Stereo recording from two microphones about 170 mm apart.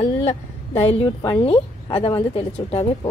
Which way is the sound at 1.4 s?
30° left (ahead or behind).